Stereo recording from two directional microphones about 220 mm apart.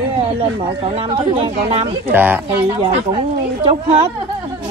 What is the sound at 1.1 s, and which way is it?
Speech, 25° right (ahead or behind).